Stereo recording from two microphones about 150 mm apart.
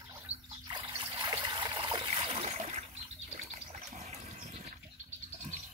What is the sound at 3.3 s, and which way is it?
Water, 50° right (ahead or behind).